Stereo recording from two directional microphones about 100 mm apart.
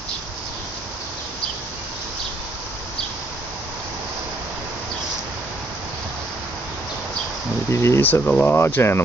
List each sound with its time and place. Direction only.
7.7 s speech: 30° left (ahead or behind)
8.1 s speech: 15° left (ahead or behind)